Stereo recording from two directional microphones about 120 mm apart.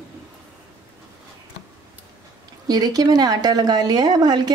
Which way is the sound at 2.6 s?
35° right (ahead or behind).